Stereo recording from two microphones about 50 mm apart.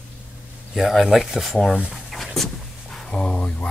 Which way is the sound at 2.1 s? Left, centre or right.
Centre.